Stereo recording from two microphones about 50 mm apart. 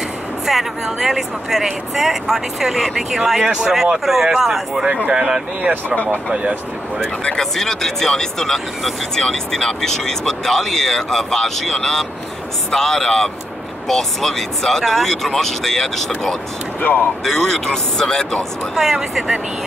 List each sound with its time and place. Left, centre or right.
0.5 s speech: centre
5.6 s speech: right
7.0 s speech: centre
17.2 s speech: centre
18.8 s speech: centre